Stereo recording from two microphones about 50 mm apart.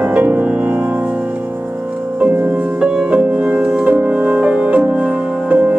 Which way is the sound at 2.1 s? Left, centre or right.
Right.